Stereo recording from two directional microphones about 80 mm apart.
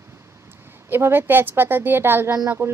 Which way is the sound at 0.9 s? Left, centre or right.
Right.